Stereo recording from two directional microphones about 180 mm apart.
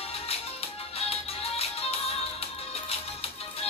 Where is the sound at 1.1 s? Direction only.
35° left (ahead or behind).